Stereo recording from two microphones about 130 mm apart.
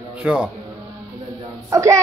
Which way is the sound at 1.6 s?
25° right (ahead or behind).